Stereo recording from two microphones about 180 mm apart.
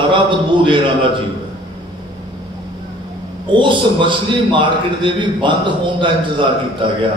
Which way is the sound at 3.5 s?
25° right (ahead or behind).